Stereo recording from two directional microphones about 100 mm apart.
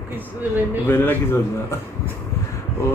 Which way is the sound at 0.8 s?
20° left (ahead or behind).